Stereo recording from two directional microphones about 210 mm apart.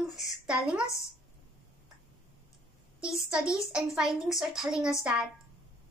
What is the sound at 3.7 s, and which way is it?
A woman's voice, 5° right (ahead or behind).